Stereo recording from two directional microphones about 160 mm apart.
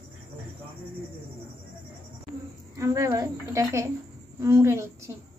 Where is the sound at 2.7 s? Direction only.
20° right (ahead or behind).